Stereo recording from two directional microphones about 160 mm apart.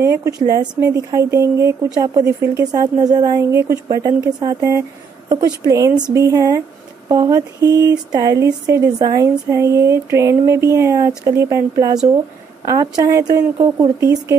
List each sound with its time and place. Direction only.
0.0 s speech: 15° right (ahead or behind)